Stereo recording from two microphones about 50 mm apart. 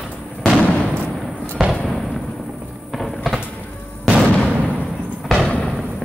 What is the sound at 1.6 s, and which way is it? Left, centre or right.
Fireworks, centre.